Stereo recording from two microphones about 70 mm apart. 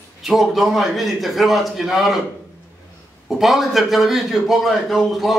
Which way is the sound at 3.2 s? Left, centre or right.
Centre.